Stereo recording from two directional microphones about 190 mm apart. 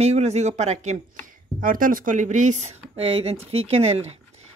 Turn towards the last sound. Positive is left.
turn(degrees=-35)  # may be behind; listen again after turning